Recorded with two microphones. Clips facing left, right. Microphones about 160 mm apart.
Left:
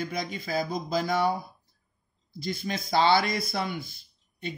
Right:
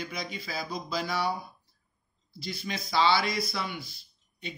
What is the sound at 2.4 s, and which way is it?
Speech, 50° left (ahead or behind).